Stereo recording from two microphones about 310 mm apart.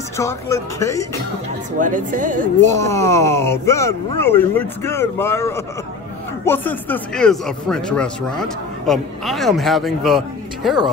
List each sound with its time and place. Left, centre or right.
0.2 s speech: centre
1.8 s speech: right
2.6 s speech: centre